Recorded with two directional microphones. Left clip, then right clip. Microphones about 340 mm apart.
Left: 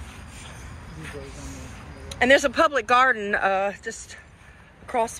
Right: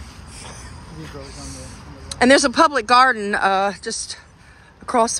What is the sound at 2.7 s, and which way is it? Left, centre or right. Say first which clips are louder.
A woman's voice: right 5 dB; centre.